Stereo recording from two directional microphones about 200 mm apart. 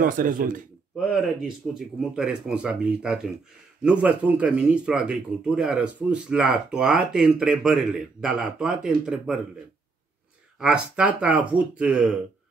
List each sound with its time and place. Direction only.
0.0 s a man's voice: 45° right (ahead or behind)
1.7 s speech: 5° right (ahead or behind)
10.6 s speech: 5° right (ahead or behind)